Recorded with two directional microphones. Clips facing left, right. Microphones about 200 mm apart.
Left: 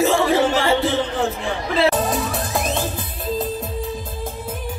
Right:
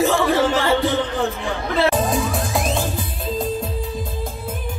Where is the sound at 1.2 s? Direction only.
Centre (ahead or behind).